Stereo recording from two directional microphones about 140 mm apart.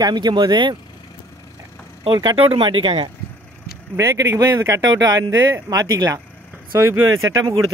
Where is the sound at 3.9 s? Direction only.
20° right (ahead or behind).